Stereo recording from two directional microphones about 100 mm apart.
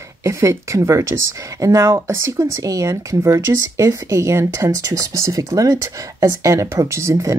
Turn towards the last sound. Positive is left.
turn(degrees=-30)  # may be behind; listen again after turning